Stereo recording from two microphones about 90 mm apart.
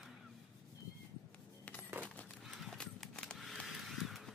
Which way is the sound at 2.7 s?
10° left (ahead or behind).